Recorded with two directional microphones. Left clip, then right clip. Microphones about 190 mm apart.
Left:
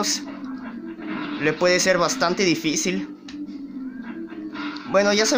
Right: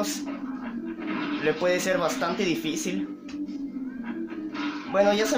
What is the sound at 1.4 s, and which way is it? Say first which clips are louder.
Speech: left 6 dB; 35° left (ahead or behind).